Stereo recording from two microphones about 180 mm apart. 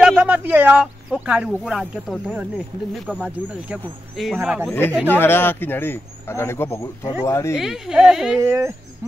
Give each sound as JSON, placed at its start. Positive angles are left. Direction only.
{"t": 0.0, "sound": "speech", "side_deg": -5}
{"t": 4.6, "sound": "a man's voice", "side_deg": 10}
{"t": 7.5, "sound": "speech", "side_deg": -5}
{"t": 8.4, "sound": "speech", "side_deg": -15}